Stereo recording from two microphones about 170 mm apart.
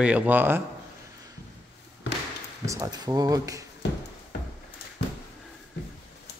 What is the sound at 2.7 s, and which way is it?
Speech, 20° right (ahead or behind).